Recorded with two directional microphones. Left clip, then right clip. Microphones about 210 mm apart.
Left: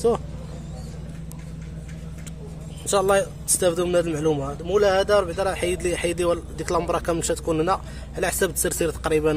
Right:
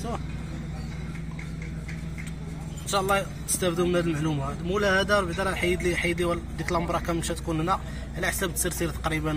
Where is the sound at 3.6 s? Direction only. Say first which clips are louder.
Left 5 dB; 50° left (ahead or behind).